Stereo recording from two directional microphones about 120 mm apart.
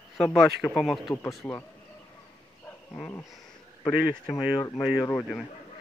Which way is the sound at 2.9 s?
20° left (ahead or behind).